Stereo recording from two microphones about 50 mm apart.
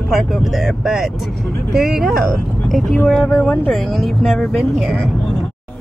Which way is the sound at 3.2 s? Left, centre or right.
Centre.